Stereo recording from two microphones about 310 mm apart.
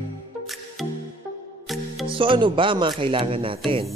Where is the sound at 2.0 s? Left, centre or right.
Centre.